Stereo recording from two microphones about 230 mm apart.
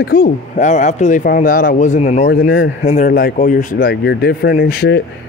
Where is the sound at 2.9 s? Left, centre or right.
Left.